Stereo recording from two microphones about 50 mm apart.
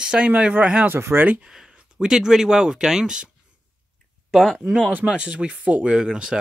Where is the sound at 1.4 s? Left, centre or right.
Centre.